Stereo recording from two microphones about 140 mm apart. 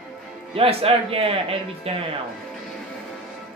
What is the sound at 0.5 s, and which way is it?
Speech, 40° right (ahead or behind).